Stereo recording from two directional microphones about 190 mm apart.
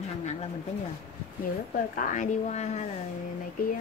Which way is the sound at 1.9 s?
40° left (ahead or behind).